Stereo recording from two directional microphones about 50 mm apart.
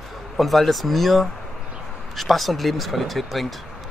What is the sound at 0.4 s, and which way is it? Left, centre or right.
A man's voice, centre.